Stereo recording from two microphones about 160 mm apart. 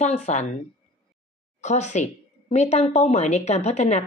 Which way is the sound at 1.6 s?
45° left (ahead or behind).